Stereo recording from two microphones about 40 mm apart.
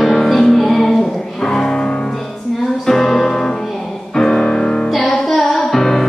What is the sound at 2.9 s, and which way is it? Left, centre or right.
Music, centre.